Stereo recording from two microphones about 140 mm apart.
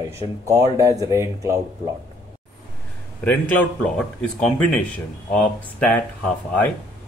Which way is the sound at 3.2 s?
10° left (ahead or behind).